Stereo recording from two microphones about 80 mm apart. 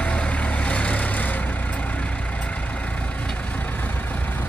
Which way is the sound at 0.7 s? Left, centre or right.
Centre.